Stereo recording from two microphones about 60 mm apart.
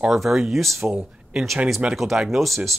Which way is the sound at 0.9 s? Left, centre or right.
Centre.